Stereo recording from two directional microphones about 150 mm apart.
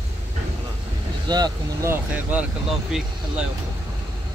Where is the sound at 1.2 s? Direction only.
30° right (ahead or behind).